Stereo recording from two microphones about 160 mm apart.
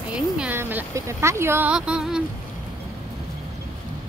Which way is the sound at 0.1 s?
10° right (ahead or behind).